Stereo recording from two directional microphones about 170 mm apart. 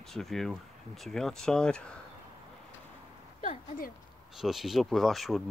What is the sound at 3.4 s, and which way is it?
Speech, 40° left (ahead or behind).